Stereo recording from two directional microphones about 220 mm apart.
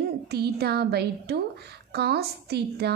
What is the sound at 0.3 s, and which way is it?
A woman's voice, 45° right (ahead or behind).